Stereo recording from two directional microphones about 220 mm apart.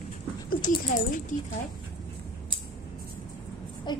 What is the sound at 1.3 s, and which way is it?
Speech, 35° left (ahead or behind).